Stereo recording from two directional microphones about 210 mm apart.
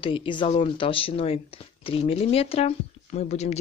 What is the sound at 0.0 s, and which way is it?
Speech, 25° left (ahead or behind).